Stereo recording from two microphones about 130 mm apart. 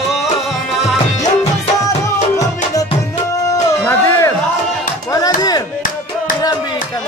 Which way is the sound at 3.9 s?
20° left (ahead or behind).